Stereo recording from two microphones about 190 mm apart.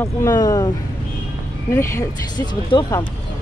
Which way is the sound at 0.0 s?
15° left (ahead or behind).